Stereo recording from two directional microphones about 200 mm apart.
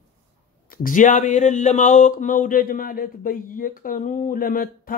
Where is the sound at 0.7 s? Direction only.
40° left (ahead or behind).